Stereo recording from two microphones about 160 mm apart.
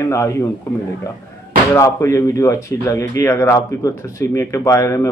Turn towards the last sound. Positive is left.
turn(degrees=20)  # may be behind; listen again after turning